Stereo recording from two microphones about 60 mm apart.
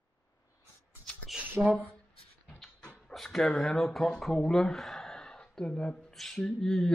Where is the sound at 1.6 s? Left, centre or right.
Right.